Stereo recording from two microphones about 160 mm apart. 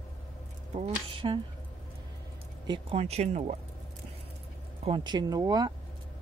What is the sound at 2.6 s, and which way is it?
Speech, 35° right (ahead or behind).